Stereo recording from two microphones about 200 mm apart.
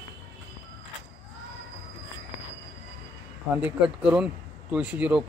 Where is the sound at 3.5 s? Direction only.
10° right (ahead or behind).